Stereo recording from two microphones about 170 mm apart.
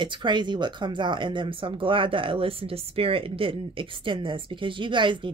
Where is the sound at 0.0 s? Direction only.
25° right (ahead or behind).